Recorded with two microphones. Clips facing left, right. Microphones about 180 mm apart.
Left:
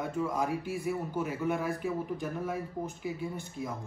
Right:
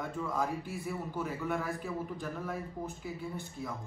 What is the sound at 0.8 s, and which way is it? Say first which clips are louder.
A man's voice: left 3 dB; centre (ahead or behind).